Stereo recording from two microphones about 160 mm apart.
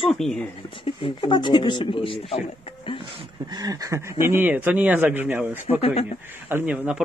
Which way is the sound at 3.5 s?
25° right (ahead or behind).